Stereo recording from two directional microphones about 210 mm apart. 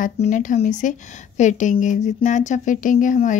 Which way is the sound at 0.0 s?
35° left (ahead or behind).